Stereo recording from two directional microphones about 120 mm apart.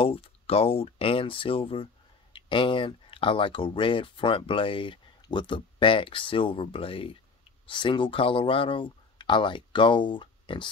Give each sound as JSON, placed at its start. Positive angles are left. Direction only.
{"t": 0.0, "sound": "speech", "side_deg": 50}